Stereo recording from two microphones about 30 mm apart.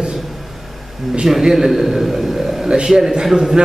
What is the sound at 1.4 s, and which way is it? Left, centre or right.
A man's voice, centre.